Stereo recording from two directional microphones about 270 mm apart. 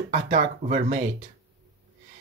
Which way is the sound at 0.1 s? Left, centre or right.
Right.